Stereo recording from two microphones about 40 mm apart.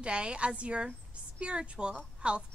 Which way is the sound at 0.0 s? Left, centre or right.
Right.